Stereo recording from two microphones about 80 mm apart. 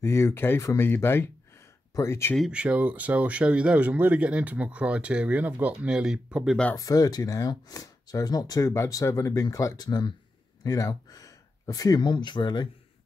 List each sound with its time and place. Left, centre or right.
0.0 s speech: left
2.5 s speech: centre
6.8 s speech: left
10.6 s speech: left
12.1 s speech: left